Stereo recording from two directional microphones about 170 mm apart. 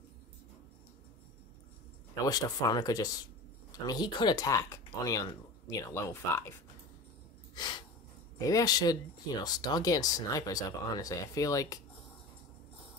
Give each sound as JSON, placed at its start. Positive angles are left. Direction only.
{"t": 2.2, "sound": "speech", "side_deg": 20}
{"t": 7.5, "sound": "a sound", "side_deg": 25}
{"t": 8.4, "sound": "speech", "side_deg": 20}